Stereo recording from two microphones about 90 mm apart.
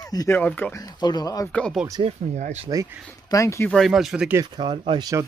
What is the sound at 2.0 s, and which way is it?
Speech, 90° right.